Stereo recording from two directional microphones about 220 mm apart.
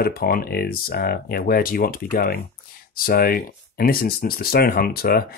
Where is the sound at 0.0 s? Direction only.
40° left (ahead or behind).